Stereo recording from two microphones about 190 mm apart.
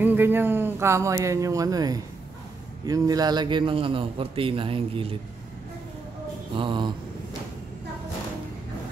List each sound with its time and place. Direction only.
0.0 s a man's voice: 10° right (ahead or behind); by 5.1 s 30° right (ahead or behind)
6.5 s a man's voice: 25° right (ahead or behind)